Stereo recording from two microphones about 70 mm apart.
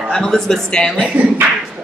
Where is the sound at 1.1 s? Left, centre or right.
Right.